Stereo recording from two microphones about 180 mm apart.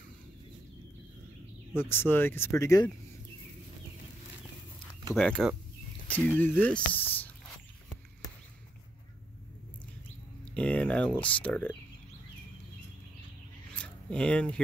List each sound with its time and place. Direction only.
1.8 s speech: 10° left (ahead or behind)
5.1 s speech: 5° left (ahead or behind)
10.4 s speech: 5° left (ahead or behind)
13.7 s a sound: 5° left (ahead or behind)